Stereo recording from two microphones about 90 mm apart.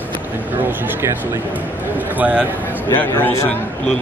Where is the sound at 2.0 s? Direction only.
20° right (ahead or behind).